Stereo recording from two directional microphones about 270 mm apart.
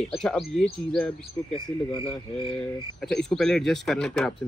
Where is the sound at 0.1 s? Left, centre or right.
Centre.